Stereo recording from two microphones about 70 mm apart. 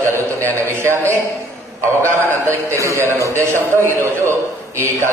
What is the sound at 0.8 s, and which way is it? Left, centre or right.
A man's voice, right.